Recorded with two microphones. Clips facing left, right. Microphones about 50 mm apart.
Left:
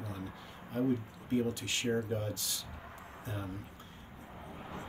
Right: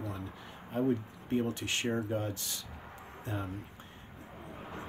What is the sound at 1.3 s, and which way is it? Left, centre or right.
Speech, right.